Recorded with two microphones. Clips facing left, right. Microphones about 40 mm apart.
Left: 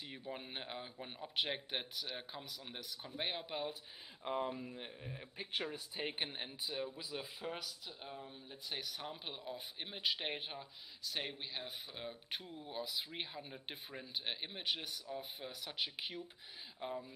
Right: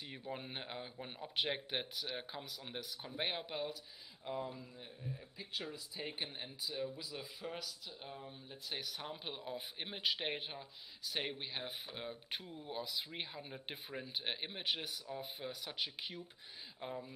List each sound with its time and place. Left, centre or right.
0.0 s speech: centre
4.2 s speech: left
5.9 s speech: left
7.5 s speech: centre
10.0 s speech: centre
11.1 s speech: centre